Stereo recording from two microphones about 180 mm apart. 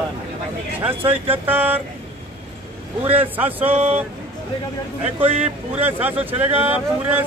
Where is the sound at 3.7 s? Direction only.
35° right (ahead or behind).